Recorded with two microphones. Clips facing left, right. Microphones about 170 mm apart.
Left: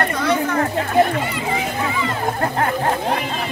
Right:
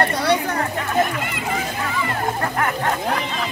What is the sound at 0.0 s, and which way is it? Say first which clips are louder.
Chatter: even; 35° right (ahead or behind).